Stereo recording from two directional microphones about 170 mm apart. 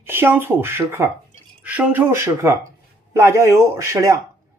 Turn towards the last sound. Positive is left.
turn(degrees=-15)  # may be behind; listen again after turning